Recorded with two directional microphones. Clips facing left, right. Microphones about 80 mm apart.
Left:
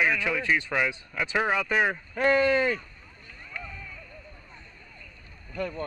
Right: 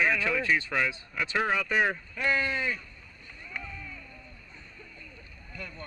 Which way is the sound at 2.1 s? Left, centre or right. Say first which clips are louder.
Left 10 dB; left.